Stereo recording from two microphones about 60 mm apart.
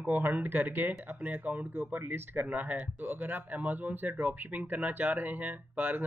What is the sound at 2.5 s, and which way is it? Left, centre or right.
Speech, right.